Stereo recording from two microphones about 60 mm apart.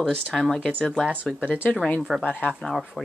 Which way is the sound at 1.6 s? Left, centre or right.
Left.